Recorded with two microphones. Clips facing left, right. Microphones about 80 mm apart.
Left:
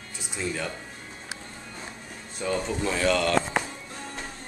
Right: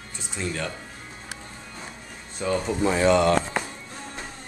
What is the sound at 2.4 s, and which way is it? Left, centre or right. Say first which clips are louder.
Speech: right 3 dB; centre.